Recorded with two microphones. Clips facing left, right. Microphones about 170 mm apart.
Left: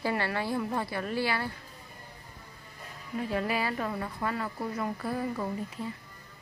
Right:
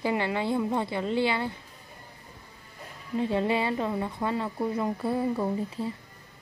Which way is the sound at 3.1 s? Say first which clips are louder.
Right 5 dB; 25° right (ahead or behind).